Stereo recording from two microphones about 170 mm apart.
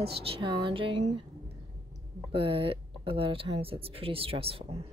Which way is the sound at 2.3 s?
30° right (ahead or behind).